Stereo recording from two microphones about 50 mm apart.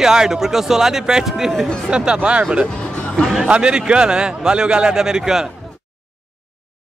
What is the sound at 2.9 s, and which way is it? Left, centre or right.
Music, left.